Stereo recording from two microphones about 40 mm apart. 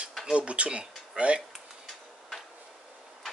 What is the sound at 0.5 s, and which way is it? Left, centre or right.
Speech, right.